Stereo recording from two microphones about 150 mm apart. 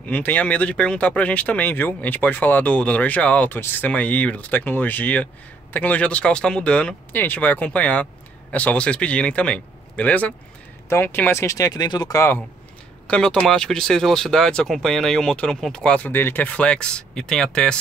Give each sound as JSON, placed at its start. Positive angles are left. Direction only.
{"t": 0.1, "sound": "speech", "side_deg": 10}
{"t": 13.0, "sound": "speech", "side_deg": 5}